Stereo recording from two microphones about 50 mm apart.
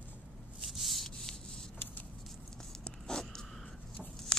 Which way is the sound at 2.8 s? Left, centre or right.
Centre.